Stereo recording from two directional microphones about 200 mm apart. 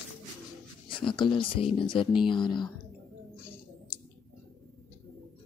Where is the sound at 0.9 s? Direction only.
25° left (ahead or behind).